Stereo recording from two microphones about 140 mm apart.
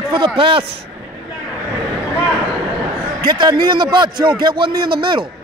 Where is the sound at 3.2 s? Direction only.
30° right (ahead or behind).